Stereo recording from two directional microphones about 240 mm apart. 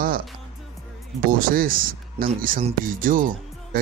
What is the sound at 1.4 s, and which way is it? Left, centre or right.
Speech, right.